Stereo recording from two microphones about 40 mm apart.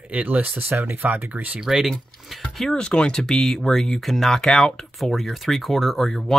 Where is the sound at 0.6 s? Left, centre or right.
Right.